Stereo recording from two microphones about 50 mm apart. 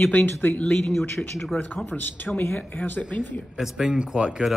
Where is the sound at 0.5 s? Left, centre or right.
Centre.